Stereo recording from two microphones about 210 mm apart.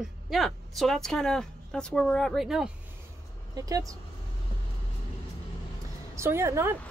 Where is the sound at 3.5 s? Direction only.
15° right (ahead or behind).